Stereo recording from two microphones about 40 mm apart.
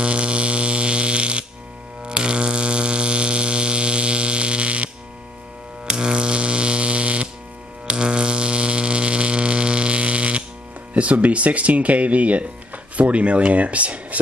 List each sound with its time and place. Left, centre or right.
0.0 s buzz: right
2.0 s mains hum: right
5.9 s music: right
7.8 s a sound: right
10.9 s speech: right